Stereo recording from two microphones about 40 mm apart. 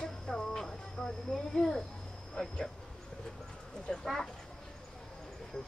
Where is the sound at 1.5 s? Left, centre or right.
Centre.